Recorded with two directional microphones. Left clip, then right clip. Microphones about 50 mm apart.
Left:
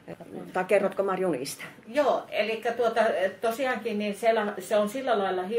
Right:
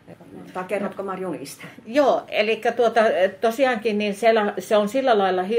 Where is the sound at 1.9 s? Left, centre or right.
Right.